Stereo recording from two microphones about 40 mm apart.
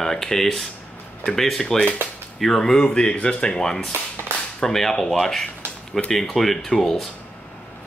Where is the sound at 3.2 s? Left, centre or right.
Left.